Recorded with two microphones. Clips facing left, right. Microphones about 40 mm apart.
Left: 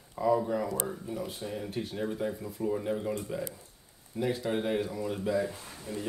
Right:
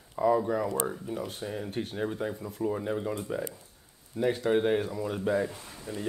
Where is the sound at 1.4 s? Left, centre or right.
Right.